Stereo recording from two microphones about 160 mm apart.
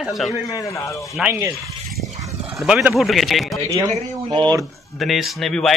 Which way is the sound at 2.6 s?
5° right (ahead or behind).